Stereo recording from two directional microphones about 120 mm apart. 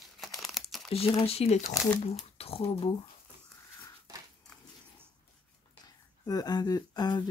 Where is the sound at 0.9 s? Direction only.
55° left (ahead or behind).